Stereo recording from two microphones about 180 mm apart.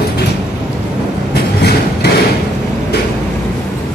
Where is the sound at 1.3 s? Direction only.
65° left (ahead or behind).